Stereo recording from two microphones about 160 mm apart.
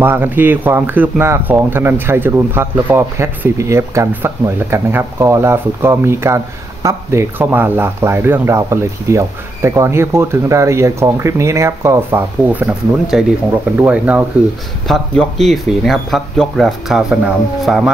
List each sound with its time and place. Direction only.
0.0 s speech: 15° right (ahead or behind)
14.9 s speech: centre (ahead or behind)